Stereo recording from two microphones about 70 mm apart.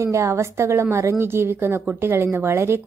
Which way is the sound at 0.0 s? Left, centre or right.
Right.